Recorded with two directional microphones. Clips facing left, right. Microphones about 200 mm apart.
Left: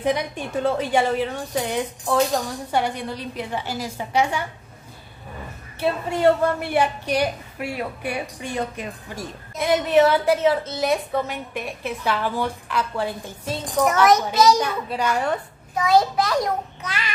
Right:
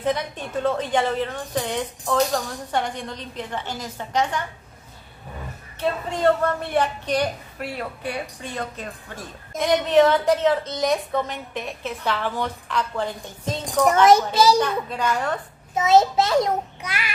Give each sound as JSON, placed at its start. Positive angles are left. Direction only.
{"t": 0.0, "sound": "a woman's voice", "side_deg": 10}
{"t": 5.8, "sound": "a woman's voice", "side_deg": 10}
{"t": 14.0, "sound": "a child's voice", "side_deg": -30}
{"t": 14.6, "sound": "a woman's voice", "side_deg": 10}
{"t": 15.7, "sound": "a child's voice", "side_deg": -25}
{"t": 16.8, "sound": "a child's voice", "side_deg": -10}